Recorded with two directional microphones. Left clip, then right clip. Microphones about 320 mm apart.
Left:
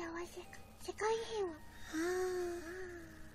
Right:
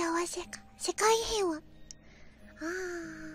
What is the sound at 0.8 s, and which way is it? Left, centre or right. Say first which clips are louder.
Speech: right 10 dB; right.